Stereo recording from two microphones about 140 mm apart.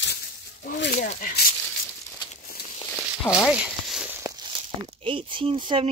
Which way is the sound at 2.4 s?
90° left.